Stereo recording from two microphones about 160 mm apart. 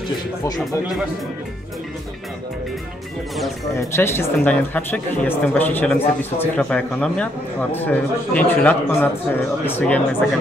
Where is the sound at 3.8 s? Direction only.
15° left (ahead or behind).